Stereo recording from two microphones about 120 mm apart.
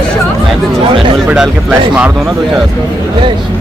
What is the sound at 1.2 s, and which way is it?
Speech, 5° right (ahead or behind).